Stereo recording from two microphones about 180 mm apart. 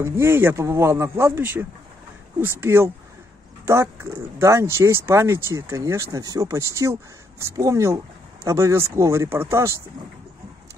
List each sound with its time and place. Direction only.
0.0 s speech: 15° right (ahead or behind)